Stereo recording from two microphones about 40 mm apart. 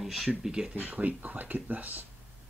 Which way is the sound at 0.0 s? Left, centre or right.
Centre.